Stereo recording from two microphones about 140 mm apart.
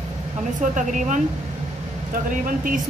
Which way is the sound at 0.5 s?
65° right (ahead or behind).